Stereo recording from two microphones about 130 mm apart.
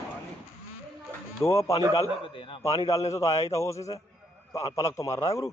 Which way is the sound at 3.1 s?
25° left (ahead or behind).